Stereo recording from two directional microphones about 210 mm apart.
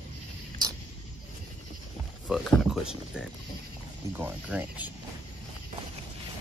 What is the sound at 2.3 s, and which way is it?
Speech, centre (ahead or behind).